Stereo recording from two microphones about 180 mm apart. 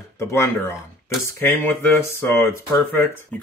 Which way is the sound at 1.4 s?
10° left (ahead or behind).